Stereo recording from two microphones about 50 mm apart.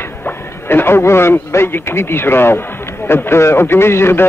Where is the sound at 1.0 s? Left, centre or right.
Left.